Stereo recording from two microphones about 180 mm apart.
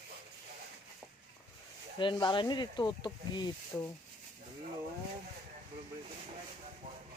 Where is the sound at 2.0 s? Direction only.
25° left (ahead or behind).